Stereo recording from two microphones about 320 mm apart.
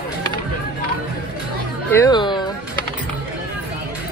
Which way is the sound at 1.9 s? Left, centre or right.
Centre.